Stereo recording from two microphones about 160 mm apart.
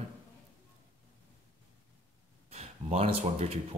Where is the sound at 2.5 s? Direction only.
40° right (ahead or behind).